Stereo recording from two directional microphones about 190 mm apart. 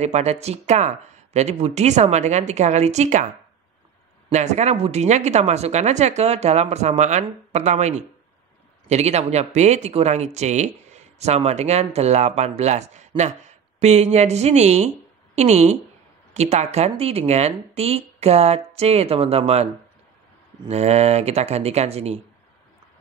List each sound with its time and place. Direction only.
0.0 s a man's voice: 35° right (ahead or behind)
4.3 s a man's voice: 35° right (ahead or behind)